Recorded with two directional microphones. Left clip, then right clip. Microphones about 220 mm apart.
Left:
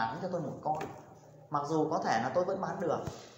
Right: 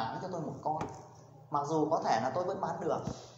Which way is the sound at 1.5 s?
45° left (ahead or behind).